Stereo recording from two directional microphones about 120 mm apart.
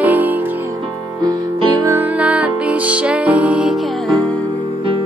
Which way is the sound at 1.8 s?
25° right (ahead or behind).